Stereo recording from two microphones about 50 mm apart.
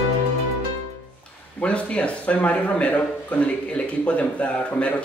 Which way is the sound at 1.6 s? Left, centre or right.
Left.